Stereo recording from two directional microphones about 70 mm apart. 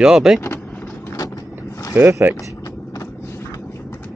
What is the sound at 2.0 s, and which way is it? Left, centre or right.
Speech, right.